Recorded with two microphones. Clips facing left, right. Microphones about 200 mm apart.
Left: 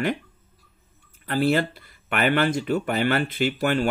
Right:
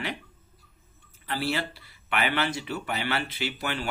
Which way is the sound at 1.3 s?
50° left (ahead or behind).